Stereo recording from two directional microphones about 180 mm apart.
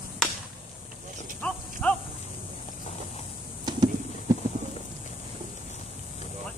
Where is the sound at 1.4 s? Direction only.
5° left (ahead or behind).